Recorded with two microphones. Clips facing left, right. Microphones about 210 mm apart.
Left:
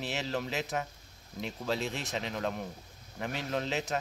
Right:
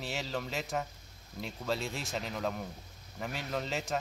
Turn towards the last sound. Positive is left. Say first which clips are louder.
# left 2 dB
turn(degrees=0)  # may be behind; listen again after turning